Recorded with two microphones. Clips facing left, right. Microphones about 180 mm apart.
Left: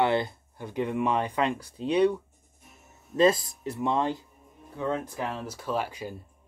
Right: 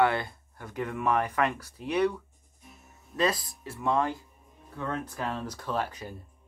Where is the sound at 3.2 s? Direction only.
20° left (ahead or behind).